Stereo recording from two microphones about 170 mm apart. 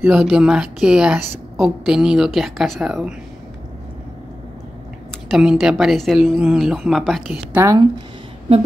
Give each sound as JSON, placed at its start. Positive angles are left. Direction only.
{"t": 0.0, "sound": "a woman's voice", "side_deg": -5}
{"t": 5.3, "sound": "a woman's voice", "side_deg": -5}
{"t": 7.5, "sound": "speech", "side_deg": -20}